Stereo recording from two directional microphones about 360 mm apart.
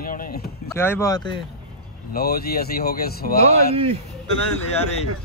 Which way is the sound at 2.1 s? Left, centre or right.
Left.